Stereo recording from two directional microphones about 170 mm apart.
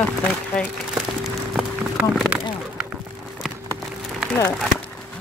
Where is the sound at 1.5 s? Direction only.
5° right (ahead or behind).